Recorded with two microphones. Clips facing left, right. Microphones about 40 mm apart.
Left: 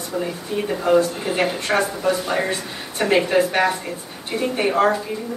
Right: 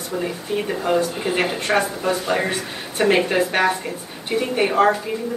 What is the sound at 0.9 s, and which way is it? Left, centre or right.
Speech, centre.